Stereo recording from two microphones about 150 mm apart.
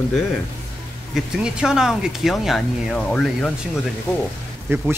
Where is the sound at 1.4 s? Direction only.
5° right (ahead or behind).